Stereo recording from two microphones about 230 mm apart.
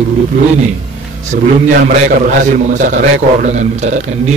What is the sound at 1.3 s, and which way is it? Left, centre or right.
A man's voice, right.